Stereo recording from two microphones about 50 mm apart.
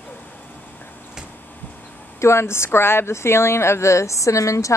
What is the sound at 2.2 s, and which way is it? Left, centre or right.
A woman's voice, left.